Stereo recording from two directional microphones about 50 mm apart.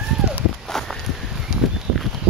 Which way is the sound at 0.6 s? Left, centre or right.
Centre.